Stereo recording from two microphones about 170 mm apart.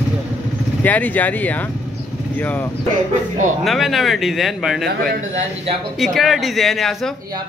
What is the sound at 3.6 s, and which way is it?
A man's voice, centre (ahead or behind).